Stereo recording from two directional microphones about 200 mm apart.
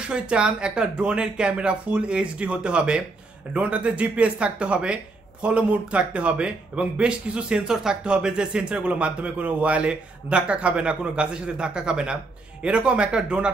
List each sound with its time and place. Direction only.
0.0 s speech: 5° right (ahead or behind)